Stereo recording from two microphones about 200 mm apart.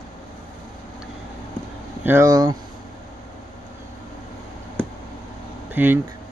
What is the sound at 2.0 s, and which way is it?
Speech, 15° right (ahead or behind).